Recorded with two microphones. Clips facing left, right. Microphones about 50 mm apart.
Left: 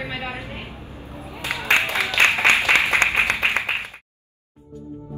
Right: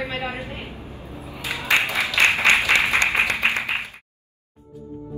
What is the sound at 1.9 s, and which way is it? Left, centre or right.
Applause, left.